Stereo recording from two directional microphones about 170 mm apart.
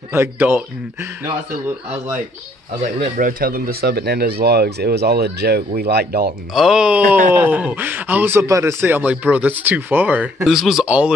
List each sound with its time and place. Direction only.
0.1 s speech: 10° right (ahead or behind)
2.8 s speech: 50° right (ahead or behind); by 6.3 s 70° right (ahead or behind)
6.5 s speech: centre (ahead or behind)